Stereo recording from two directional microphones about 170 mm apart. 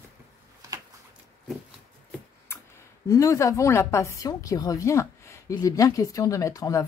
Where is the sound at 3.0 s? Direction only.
20° left (ahead or behind).